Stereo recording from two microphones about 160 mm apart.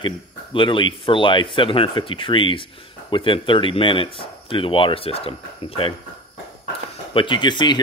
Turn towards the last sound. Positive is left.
turn(degrees=30)  # may be behind; listen again after turning